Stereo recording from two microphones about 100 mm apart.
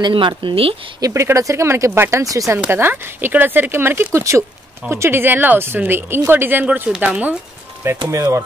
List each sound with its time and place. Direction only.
0.0 s speech: 55° right (ahead or behind)
0.4 s speech: 65° right (ahead or behind)
1.0 s speech: 30° right (ahead or behind)
2.7 s speech: 20° right (ahead or behind)
8.1 s speech: 30° right (ahead or behind)